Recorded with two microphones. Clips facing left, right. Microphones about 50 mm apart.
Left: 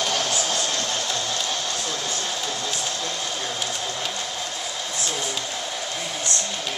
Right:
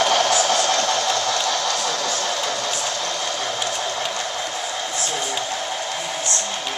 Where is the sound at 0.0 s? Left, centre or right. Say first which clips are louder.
Right 7 dB; right.